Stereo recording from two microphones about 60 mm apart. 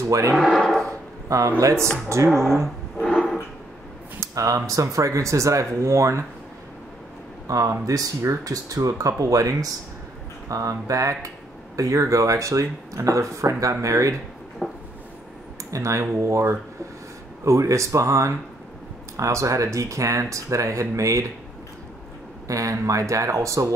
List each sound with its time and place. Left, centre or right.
0.0 s speech: right
0.3 s speech: centre
1.6 s speech: right
2.6 s a sound: centre
4.2 s a sound: right
4.6 s speech: right
7.4 s speech: right
14.6 s a sound: centre
15.7 s speech: right
22.5 s speech: right